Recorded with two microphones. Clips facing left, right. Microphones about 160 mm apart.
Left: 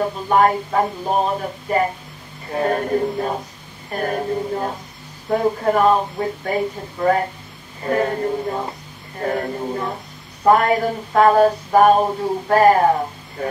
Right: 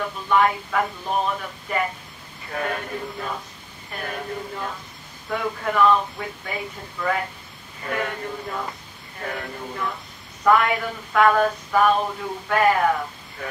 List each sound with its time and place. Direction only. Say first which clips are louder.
0.0 s speech: left 4 dB; 40° left (ahead or behind)